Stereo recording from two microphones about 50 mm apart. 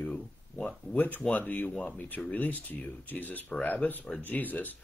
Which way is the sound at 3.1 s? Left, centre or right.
Left.